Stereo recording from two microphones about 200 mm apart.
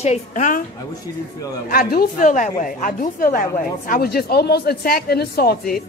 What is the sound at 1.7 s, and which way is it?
A woman's voice, 50° left (ahead or behind).